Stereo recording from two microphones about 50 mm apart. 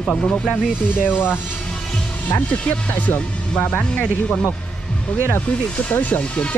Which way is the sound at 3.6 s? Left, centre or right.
Left.